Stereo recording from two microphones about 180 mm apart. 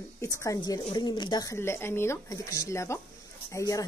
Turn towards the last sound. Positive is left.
turn(degrees=20)  # may be behind; listen again after turning